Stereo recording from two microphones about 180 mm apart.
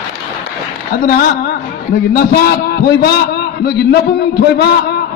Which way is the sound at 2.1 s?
60° left (ahead or behind).